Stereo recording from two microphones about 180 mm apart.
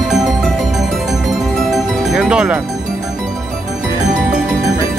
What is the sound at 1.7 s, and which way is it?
Music, 5° right (ahead or behind).